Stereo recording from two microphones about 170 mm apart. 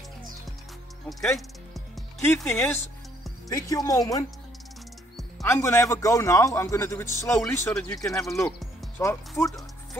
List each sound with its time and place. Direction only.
1.0 s music: centre (ahead or behind)
2.5 s a man's voice: 15° left (ahead or behind)
5.4 s a man's voice: 15° left (ahead or behind)
8.5 s music: 5° left (ahead or behind)
9.4 s speech: 20° left (ahead or behind)